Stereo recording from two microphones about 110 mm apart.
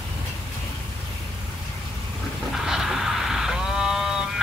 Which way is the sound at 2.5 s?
5° right (ahead or behind).